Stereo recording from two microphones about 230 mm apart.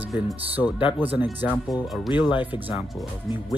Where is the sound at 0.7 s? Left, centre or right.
Centre.